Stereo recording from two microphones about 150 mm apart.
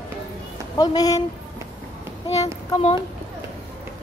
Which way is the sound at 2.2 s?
45° left (ahead or behind).